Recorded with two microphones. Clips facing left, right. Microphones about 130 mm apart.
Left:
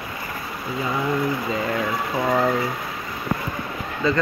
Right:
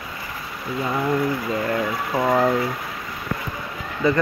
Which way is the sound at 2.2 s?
10° right (ahead or behind).